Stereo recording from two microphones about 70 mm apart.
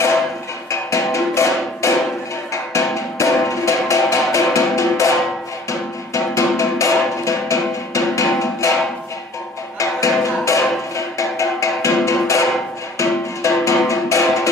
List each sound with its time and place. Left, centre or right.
0.7 s music: left
9.8 s music: left